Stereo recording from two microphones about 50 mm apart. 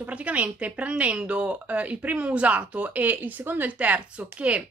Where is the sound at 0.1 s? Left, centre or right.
Right.